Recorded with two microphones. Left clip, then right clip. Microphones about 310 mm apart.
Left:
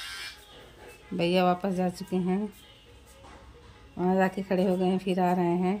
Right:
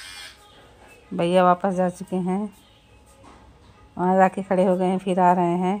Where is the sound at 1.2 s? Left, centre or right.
Centre.